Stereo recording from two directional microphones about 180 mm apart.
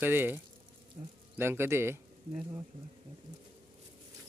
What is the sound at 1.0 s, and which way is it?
Speech, 45° right (ahead or behind).